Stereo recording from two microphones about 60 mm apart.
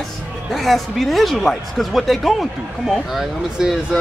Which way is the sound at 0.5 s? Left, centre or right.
Centre.